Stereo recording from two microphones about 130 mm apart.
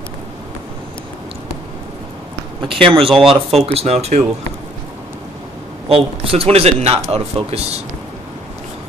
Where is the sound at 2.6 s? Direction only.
40° right (ahead or behind).